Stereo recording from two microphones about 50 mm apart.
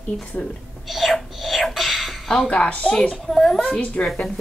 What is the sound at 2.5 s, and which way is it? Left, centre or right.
Speech, left.